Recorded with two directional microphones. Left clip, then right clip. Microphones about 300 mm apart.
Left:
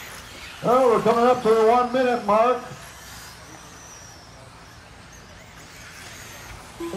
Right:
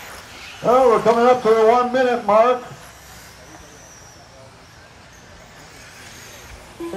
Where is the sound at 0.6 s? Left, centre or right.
Right.